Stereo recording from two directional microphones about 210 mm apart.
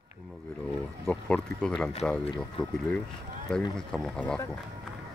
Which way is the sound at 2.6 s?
25° left (ahead or behind).